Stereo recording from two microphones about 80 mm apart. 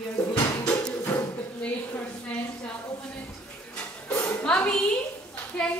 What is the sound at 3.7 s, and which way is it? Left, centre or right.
Dog, centre.